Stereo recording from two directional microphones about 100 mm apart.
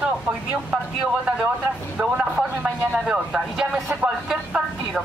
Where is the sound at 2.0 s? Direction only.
15° right (ahead or behind).